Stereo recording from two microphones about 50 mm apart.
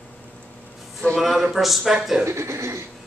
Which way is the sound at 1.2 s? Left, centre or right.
Centre.